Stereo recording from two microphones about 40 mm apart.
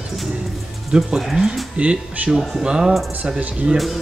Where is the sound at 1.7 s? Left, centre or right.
Right.